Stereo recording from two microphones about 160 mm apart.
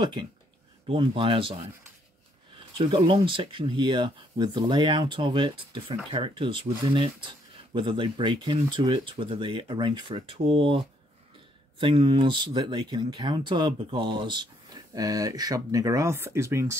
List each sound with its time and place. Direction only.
0.8 s speech: 35° right (ahead or behind)
2.8 s speech: 35° right (ahead or behind)
11.8 s speech: 30° right (ahead or behind)